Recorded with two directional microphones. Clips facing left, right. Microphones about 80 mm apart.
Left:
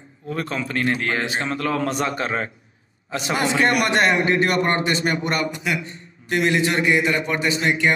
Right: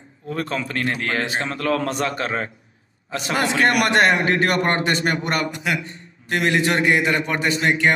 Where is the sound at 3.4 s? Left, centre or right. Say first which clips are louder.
Right 1 dB; right.